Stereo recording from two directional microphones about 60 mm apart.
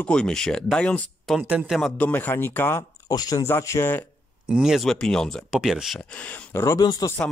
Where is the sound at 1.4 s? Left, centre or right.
Right.